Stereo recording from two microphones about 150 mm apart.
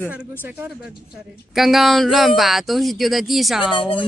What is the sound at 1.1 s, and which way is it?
A woman's voice, centre (ahead or behind).